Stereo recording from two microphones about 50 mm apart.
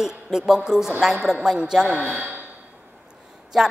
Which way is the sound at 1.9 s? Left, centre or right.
Right.